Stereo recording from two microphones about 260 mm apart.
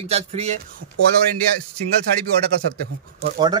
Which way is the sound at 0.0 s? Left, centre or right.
Right.